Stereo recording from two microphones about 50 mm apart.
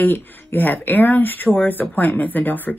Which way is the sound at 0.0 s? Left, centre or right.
Left.